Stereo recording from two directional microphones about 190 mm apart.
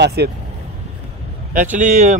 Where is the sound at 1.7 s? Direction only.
40° right (ahead or behind).